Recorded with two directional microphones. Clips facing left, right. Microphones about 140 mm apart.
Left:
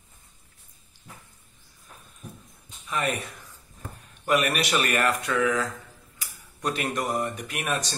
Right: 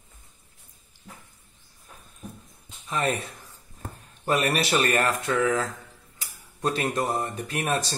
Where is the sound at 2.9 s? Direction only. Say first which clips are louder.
Right 2 dB; 30° right (ahead or behind).